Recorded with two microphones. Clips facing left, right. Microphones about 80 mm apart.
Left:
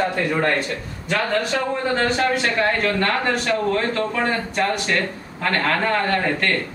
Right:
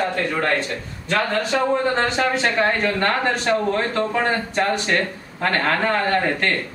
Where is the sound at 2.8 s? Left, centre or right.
Right.